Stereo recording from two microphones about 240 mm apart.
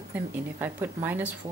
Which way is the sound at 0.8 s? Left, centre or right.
Centre.